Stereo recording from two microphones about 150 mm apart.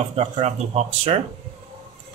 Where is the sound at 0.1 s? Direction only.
45° right (ahead or behind).